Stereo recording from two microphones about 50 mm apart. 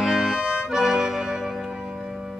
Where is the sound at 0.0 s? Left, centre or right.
Centre.